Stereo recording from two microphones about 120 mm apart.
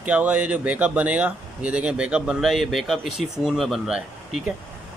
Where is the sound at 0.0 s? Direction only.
10° right (ahead or behind).